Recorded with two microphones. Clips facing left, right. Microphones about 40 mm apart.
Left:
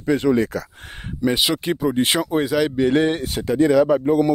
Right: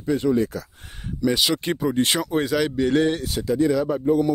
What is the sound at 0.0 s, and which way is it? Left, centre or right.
Speech, left.